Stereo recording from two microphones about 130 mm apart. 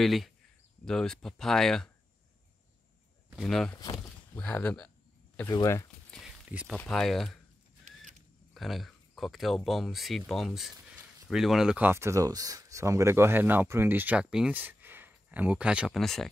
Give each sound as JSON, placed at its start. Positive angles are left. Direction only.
{"t": 0.0, "sound": "speech", "side_deg": 0}
{"t": 3.4, "sound": "speech", "side_deg": 5}
{"t": 4.4, "sound": "a sound", "side_deg": 10}
{"t": 5.5, "sound": "speech", "side_deg": 25}
{"t": 6.2, "sound": "a sound", "side_deg": -5}
{"t": 6.9, "sound": "speech", "side_deg": 0}
{"t": 8.5, "sound": "speech", "side_deg": 0}
{"t": 16.0, "sound": "speech", "side_deg": 0}